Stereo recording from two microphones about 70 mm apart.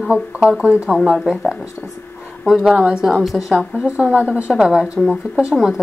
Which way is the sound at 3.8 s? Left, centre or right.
Centre.